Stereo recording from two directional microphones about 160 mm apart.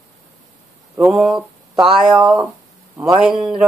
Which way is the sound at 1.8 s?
5° right (ahead or behind).